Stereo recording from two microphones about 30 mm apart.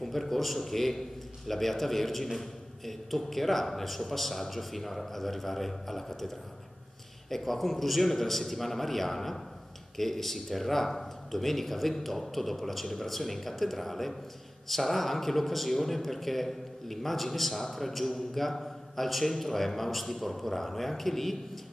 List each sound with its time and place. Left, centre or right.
0.0 s a man's voice: centre